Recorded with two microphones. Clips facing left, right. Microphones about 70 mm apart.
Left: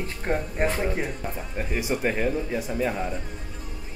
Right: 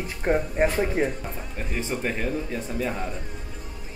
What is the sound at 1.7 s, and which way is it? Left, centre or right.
Speech, centre.